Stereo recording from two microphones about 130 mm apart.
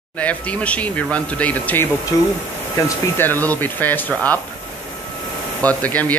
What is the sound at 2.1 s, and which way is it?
A man's voice, 25° left (ahead or behind).